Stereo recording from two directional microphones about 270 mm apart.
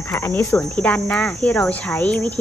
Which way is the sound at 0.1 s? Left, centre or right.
Centre.